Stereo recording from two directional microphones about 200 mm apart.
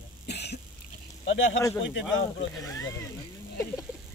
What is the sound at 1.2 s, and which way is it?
Speech, 70° left (ahead or behind).